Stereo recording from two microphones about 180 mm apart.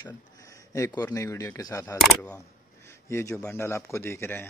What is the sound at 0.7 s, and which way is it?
Speech, 20° left (ahead or behind).